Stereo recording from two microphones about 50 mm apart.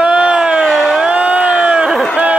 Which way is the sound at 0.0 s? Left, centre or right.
Right.